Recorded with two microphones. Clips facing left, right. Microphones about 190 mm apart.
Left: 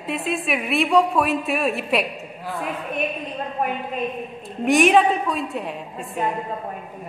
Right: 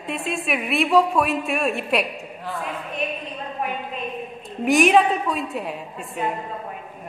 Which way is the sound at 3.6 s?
40° left (ahead or behind).